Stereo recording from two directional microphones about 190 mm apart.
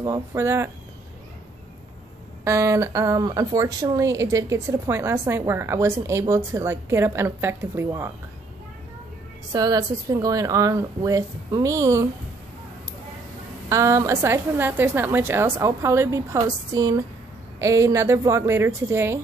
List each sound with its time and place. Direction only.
0.0 s speech: 15° right (ahead or behind)
2.4 s speech: 15° right (ahead or behind)
9.5 s speech: 20° right (ahead or behind)
13.7 s speech: 15° right (ahead or behind)